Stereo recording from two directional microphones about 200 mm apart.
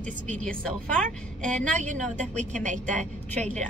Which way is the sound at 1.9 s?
35° right (ahead or behind).